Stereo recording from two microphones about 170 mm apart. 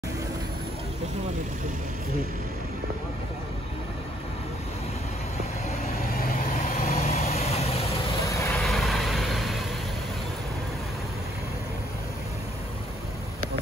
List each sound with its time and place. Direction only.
6.1 s vehicle: 55° left (ahead or behind); by 8.2 s 35° left (ahead or behind)
8.2 s vehicle: 15° left (ahead or behind)
8.5 s vehicle: centre (ahead or behind)